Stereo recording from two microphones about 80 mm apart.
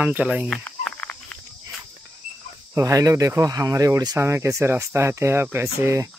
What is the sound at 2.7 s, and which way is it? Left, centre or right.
Speech, right.